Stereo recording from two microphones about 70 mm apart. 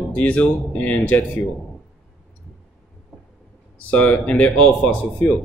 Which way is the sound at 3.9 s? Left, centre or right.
Centre.